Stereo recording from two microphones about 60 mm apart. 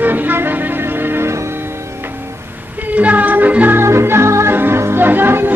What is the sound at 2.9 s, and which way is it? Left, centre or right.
Music, right.